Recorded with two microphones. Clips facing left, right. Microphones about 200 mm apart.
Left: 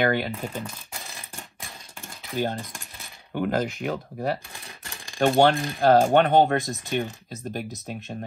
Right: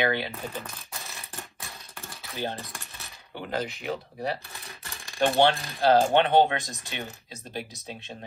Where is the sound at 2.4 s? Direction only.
50° left (ahead or behind).